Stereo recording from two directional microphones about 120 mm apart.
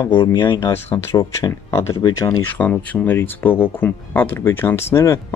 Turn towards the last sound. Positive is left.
turn(degrees=25)  # may be behind; listen again after turning